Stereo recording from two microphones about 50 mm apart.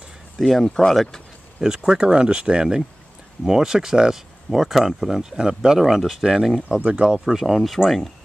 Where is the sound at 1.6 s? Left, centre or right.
Centre.